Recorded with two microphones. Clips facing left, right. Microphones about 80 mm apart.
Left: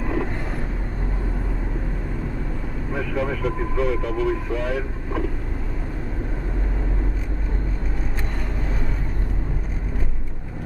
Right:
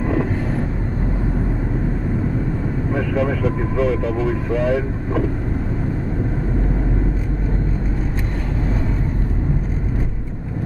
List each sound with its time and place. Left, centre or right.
2.9 s speech: right